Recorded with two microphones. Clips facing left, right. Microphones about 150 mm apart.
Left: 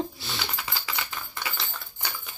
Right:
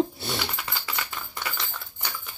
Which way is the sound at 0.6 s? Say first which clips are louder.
Right 1 dB; 5° left (ahead or behind).